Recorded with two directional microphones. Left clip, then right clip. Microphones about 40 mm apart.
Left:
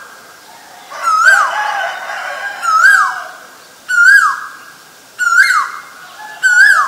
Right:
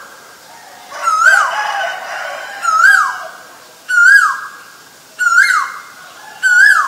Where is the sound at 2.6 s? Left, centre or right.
Right.